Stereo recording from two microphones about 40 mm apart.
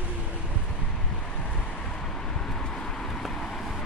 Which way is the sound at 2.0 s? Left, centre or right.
Centre.